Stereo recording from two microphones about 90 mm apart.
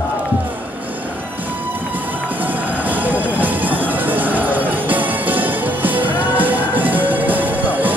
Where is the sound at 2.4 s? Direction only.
20° right (ahead or behind).